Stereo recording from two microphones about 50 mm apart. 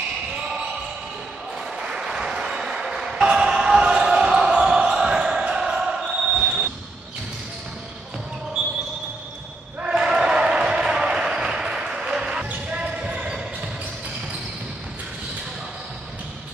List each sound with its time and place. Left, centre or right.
1.8 s ping: centre
4.6 s basketball bounce: centre
9.8 s a sound: centre
12.4 s basketball bounce: right